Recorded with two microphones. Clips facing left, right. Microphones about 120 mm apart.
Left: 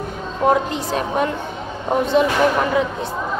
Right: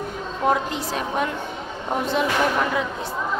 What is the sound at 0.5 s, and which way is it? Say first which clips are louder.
Speech: left 4 dB; centre (ahead or behind).